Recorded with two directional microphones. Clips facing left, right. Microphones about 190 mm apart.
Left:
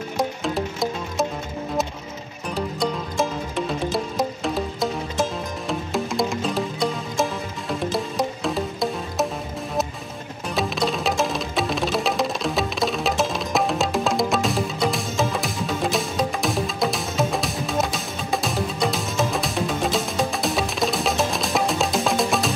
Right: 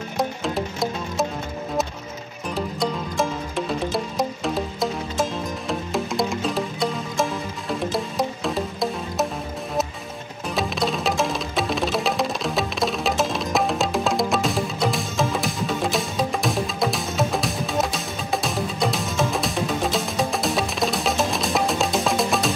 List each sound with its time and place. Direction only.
0.2 s music: centre (ahead or behind)
2.5 s music: centre (ahead or behind)
10.5 s music: centre (ahead or behind)